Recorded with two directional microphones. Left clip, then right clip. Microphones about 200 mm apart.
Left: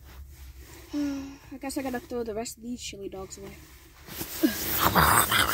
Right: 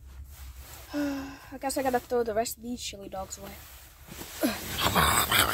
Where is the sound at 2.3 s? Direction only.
30° right (ahead or behind).